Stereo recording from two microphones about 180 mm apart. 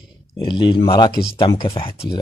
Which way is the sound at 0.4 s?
25° left (ahead or behind).